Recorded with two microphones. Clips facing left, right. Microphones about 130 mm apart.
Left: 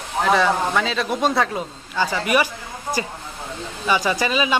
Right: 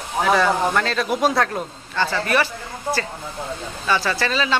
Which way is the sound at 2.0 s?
15° left (ahead or behind).